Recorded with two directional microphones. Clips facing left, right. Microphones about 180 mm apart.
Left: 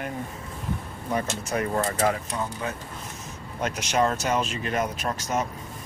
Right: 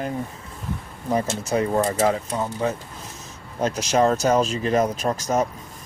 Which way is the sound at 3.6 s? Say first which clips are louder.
Right 5 dB; 35° right (ahead or behind).